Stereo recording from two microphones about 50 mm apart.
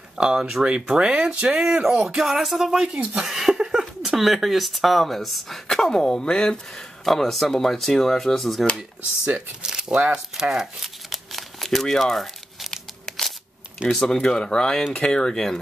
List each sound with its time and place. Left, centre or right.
0.2 s speech: centre
1.6 s speech: centre
7.1 s speech: centre
9.6 s speech: centre
11.1 s crumpling: centre
14.0 s speech: centre
15.2 s speech: centre